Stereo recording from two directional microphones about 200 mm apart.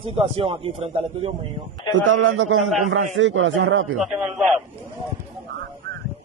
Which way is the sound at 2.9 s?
70° right (ahead or behind).